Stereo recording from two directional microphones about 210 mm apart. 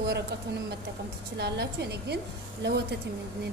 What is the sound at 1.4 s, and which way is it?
A woman's voice, 50° right (ahead or behind).